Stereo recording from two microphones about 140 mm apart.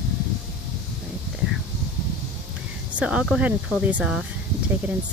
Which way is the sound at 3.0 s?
5° right (ahead or behind).